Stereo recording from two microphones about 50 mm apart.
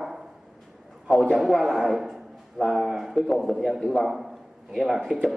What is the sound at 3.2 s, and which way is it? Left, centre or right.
A man's voice, centre.